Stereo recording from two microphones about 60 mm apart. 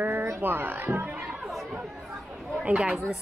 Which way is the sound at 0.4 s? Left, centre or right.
Right.